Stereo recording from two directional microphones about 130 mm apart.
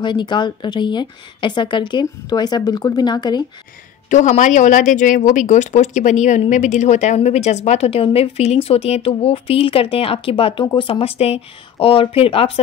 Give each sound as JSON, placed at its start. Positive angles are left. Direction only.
{"t": 0.0, "sound": "speech", "side_deg": 35}
{"t": 4.1, "sound": "a woman's voice", "side_deg": 70}